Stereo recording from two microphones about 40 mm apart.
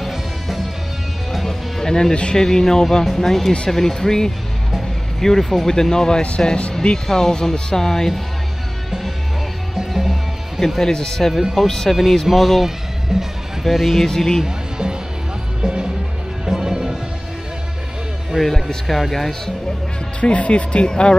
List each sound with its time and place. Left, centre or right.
0.0 s music: centre
1.3 s music: centre
2.3 s speech: centre
5.7 s speech: centre
9.8 s music: centre
10.8 s speech: centre
11.9 s speech: centre
14.0 s speech: centre
14.4 s music: centre
18.4 s speech: centre
20.2 s speech: left